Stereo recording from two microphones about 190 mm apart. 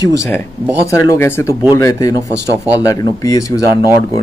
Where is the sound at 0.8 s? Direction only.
15° left (ahead or behind).